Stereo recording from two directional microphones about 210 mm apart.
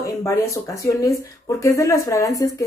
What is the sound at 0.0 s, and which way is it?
Speech, 15° left (ahead or behind).